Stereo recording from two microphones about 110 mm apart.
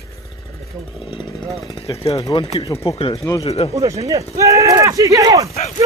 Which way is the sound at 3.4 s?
65° left (ahead or behind).